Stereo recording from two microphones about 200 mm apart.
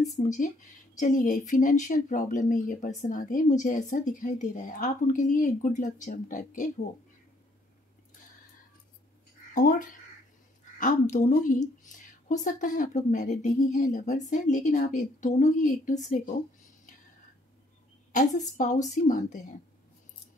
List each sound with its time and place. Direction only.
0.2 s speech: 40° left (ahead or behind)
9.5 s speech: 40° left (ahead or behind)
18.1 s speech: 40° left (ahead or behind)